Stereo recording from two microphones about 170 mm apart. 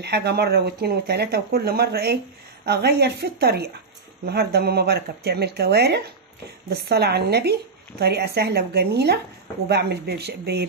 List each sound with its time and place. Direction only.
0.0 s a woman's voice: 75° right (ahead or behind)